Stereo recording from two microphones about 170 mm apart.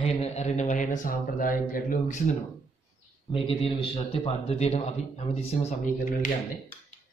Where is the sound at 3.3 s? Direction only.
35° left (ahead or behind).